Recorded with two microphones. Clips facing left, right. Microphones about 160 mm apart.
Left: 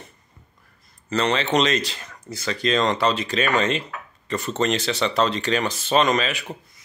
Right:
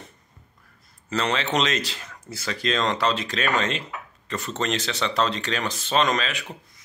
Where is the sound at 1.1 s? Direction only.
5° right (ahead or behind).